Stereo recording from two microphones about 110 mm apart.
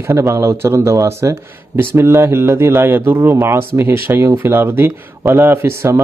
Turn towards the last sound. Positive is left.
turn(degrees=-25)  # may be behind; listen again after turning